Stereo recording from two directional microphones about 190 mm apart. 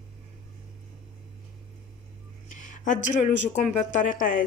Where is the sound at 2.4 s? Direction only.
40° left (ahead or behind).